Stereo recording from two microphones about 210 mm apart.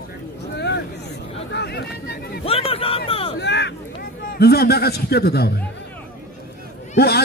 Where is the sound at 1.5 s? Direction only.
50° left (ahead or behind).